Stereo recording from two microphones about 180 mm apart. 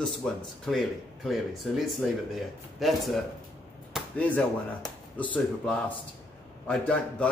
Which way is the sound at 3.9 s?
5° left (ahead or behind).